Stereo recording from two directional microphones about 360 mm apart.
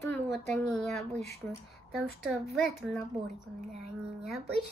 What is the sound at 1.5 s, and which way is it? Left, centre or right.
A woman's voice, centre.